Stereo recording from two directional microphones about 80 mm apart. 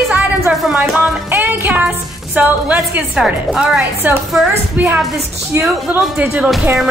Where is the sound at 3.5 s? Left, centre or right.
Centre.